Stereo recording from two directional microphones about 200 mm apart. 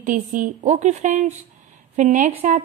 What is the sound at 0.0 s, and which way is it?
A woman's voice, 40° right (ahead or behind).